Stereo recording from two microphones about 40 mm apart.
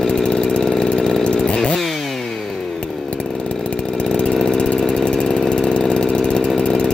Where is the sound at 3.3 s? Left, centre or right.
Centre.